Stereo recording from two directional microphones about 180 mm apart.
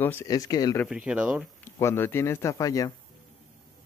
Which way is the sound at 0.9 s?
5° right (ahead or behind).